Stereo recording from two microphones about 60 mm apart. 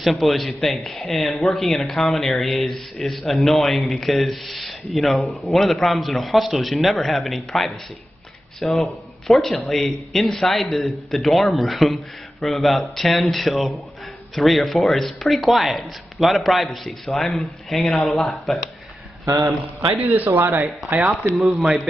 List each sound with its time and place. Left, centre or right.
0.0 s speech: centre
19.2 s a man's voice: right
20.0 s speech: right
21.4 s speech: centre